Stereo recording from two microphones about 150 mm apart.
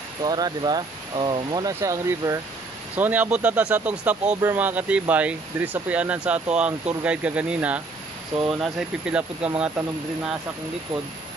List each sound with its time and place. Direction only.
0.2 s speech: 30° right (ahead or behind); by 10.3 s 5° right (ahead or behind)